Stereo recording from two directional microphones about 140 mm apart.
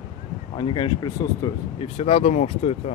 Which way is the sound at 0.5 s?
35° left (ahead or behind).